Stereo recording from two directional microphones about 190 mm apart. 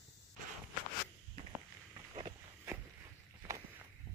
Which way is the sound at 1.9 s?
25° right (ahead or behind).